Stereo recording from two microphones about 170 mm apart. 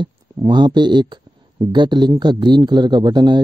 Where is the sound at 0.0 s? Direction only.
25° right (ahead or behind).